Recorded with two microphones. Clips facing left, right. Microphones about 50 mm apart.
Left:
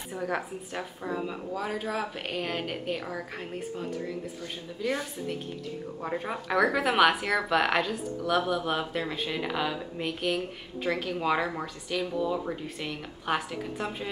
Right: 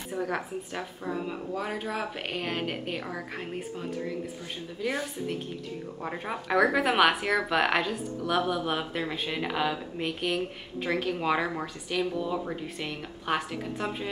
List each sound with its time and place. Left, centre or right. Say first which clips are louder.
0.1 s speech: right 1 dB; centre
1.2 s speech: even; centre
4.8 s speech: left 1 dB; centre
6.0 s speech: left 1 dB; centre